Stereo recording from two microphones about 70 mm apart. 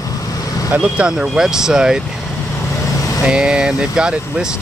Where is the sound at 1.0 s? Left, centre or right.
Centre.